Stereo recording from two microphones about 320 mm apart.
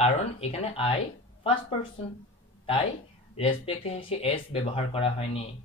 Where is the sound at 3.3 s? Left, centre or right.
Centre.